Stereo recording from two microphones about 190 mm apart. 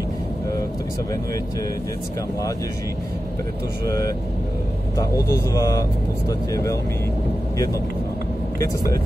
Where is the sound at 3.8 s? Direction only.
20° left (ahead or behind).